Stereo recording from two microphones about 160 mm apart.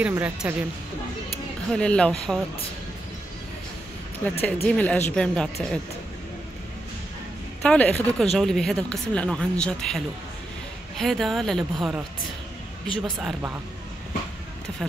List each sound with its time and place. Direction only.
0.0 s a woman's voice: 10° right (ahead or behind)
1.7 s speech: 5° left (ahead or behind)
4.2 s speech: 10° left (ahead or behind)
7.6 s speech: 10° left (ahead or behind)